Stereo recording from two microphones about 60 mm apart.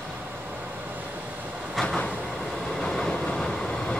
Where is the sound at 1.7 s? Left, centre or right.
Centre.